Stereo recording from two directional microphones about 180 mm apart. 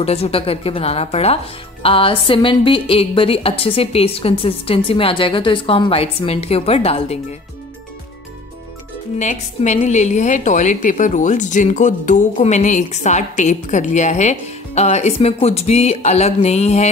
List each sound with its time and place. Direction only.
0.0 s a woman's voice: 35° left (ahead or behind)
9.2 s a woman's voice: 40° left (ahead or behind)